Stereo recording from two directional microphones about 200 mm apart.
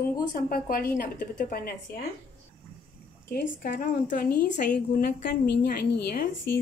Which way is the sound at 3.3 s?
45° left (ahead or behind).